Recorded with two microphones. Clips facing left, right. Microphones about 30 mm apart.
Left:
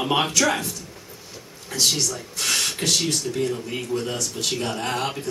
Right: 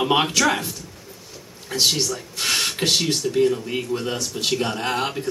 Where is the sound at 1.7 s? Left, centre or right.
Right.